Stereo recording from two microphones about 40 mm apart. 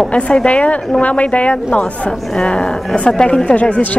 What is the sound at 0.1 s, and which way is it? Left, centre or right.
A woman's voice, left.